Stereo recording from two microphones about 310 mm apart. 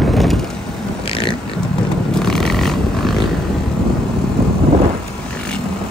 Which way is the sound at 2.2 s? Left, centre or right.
Centre.